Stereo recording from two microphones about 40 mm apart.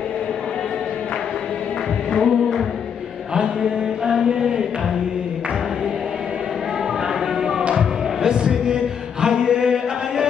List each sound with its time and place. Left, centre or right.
2.1 s chant: centre
4.0 s chant: centre
7.7 s music: centre
9.2 s chant: centre